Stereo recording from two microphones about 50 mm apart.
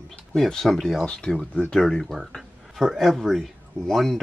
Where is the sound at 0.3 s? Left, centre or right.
Centre.